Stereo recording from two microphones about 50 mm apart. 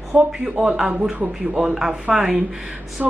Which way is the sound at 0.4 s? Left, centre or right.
Centre.